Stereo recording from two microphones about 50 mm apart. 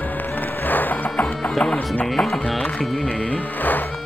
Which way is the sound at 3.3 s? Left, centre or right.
Left.